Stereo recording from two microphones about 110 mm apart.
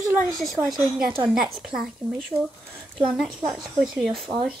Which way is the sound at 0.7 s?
5° right (ahead or behind).